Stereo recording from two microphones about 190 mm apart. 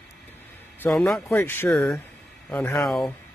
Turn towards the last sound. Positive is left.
turn(degrees=5)  # may be behind; listen again after turning